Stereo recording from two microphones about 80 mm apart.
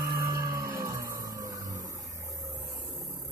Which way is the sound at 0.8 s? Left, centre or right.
Right.